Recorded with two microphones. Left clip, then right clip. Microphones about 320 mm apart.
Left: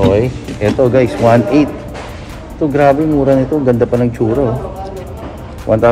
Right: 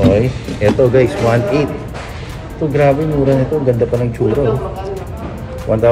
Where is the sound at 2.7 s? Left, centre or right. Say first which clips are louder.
Left 3 dB; centre.